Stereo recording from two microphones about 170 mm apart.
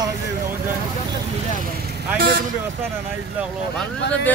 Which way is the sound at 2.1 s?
60° right (ahead or behind).